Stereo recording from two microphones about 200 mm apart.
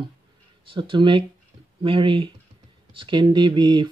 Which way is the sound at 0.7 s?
25° right (ahead or behind).